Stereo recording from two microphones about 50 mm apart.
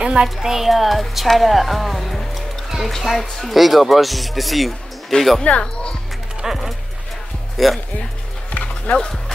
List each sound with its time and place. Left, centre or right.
0.0 s speech: centre
5.4 s speech: left
6.4 s speech: centre
8.5 s music: left